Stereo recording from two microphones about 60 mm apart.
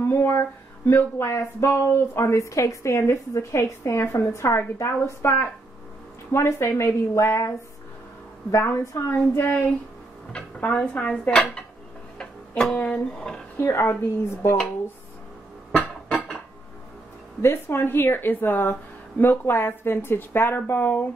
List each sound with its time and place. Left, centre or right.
0.0 s music: left
0.8 s a woman's voice: left
10.6 s dishes: left
12.2 s music: centre
12.8 s speech: centre
13.6 s a woman's voice: left
15.7 s music: centre
17.4 s a woman's voice: left